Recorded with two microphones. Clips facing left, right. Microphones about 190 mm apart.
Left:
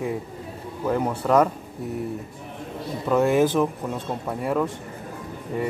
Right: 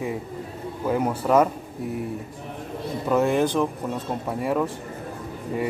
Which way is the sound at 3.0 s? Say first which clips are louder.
Left 2 dB; centre (ahead or behind).